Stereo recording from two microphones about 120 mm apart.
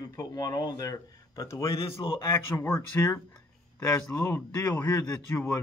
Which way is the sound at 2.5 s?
20° left (ahead or behind).